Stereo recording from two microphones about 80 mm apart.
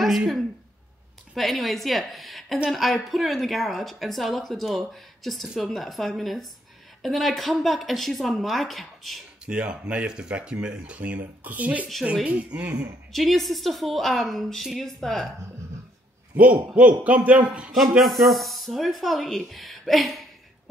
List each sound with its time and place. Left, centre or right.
0.0 s a woman's voice: centre
9.5 s speech: centre
13.1 s a man's voice: centre
16.3 s a man's voice: centre